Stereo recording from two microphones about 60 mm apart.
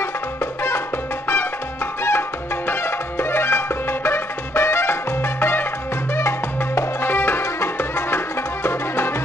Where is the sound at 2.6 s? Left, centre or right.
Left.